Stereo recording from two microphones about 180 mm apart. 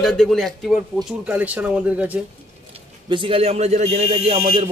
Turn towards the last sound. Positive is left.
turn(degrees=-35)  # may be behind; listen again after turning